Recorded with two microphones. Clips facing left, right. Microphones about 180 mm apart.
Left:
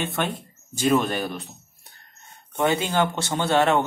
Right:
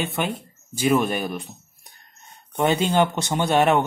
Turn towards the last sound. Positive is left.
turn(degrees=-20)  # may be behind; listen again after turning